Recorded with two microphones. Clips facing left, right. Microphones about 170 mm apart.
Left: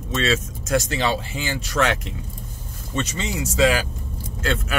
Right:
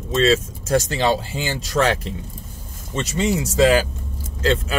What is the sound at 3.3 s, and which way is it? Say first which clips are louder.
Speech: right 3 dB; 35° right (ahead or behind).